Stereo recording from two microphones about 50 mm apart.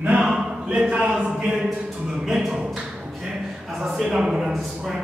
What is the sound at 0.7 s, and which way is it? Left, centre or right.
Speech, centre.